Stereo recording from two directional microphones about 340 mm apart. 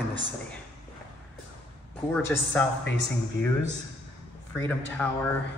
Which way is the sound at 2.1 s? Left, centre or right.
Centre.